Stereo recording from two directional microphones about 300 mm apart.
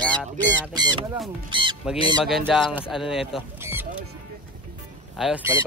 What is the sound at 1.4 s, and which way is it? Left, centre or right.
Speech, centre.